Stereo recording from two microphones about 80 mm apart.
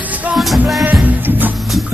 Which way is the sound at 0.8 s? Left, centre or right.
Right.